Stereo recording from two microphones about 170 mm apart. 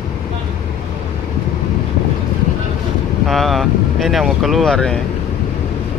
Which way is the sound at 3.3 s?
Centre (ahead or behind).